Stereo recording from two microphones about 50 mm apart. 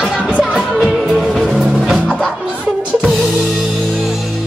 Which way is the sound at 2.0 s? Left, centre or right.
Centre.